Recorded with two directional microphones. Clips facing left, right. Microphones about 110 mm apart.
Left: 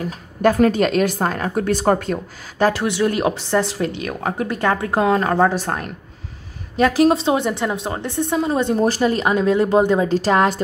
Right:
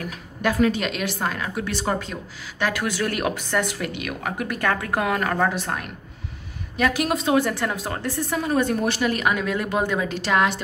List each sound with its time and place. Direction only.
0.0 s speech: 40° left (ahead or behind)
2.6 s speech: 25° left (ahead or behind)
8.8 s a woman's voice: 35° left (ahead or behind)